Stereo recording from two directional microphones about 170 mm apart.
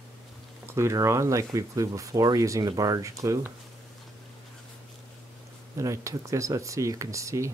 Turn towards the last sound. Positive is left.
turn(degrees=-15)  # may be behind; listen again after turning